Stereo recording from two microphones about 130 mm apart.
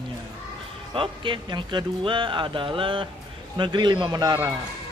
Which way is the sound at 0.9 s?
40° right (ahead or behind).